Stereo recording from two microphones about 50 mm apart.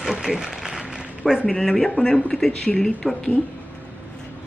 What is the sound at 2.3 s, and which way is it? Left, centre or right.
Speech, centre.